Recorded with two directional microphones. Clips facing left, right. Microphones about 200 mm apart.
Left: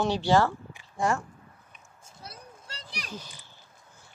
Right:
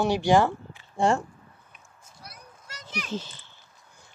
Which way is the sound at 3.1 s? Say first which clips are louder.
Right 9 dB; 25° right (ahead or behind).